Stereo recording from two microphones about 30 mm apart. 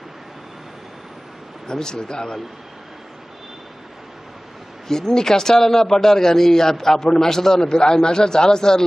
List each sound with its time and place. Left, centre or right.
1.7 s a man's voice: left
4.8 s a man's voice: centre